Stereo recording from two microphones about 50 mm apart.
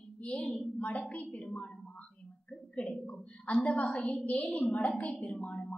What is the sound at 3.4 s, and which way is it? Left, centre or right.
A woman's voice, left.